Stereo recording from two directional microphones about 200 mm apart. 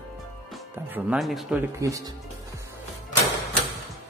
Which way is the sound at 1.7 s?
15° right (ahead or behind).